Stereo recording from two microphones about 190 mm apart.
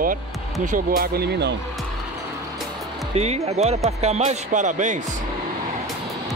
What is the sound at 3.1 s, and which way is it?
Speech, 35° right (ahead or behind).